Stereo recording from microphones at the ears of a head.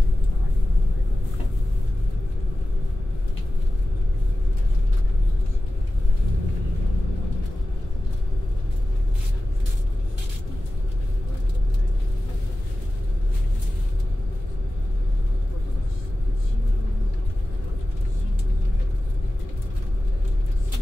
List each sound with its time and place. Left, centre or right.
6.2 s vehicle: left